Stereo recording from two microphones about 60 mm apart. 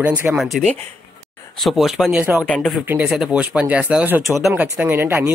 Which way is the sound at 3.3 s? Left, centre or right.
Right.